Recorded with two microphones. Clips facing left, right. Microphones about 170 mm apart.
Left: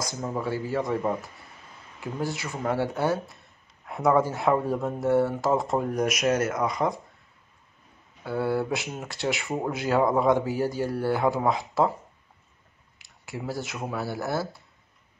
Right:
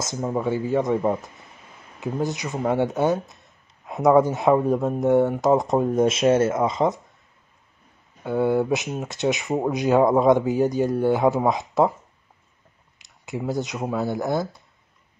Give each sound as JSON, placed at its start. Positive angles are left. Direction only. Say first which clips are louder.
{"t": 0.0, "sound": "speech", "louder": "right 5 dB", "side_deg": -20}
{"t": 8.2, "sound": "speech", "louder": "right 5 dB", "side_deg": -20}
{"t": 13.0, "sound": "speech", "louder": "right 6 dB", "side_deg": -20}